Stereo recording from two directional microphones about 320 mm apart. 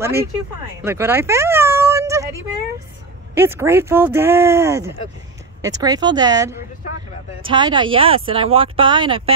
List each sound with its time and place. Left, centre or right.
0.0 s speech: centre
0.8 s a sound: centre
3.3 s speech: centre